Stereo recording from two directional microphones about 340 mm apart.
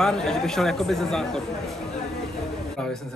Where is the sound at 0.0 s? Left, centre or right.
Centre.